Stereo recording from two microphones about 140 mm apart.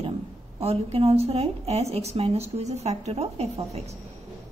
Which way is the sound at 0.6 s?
45° right (ahead or behind).